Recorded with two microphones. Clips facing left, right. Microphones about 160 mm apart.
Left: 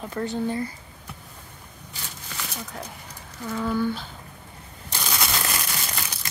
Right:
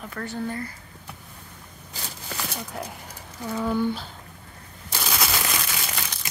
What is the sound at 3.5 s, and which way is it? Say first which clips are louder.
Speech: even; 15° right (ahead or behind).